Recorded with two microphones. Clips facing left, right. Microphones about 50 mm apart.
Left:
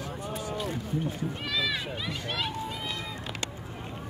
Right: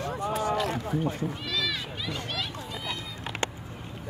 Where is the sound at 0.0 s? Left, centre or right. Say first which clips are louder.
Right 7 dB; right.